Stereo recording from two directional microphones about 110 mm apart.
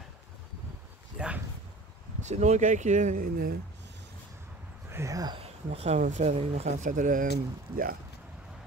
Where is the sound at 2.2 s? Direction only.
90° right.